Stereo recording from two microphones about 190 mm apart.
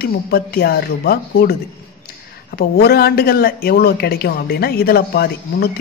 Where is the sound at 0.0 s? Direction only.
55° left (ahead or behind).